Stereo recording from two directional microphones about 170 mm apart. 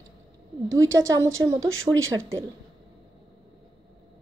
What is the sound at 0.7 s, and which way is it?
A woman's voice, 20° right (ahead or behind).